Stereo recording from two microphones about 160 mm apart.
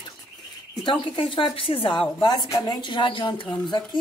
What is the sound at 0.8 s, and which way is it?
A woman's voice, 30° left (ahead or behind).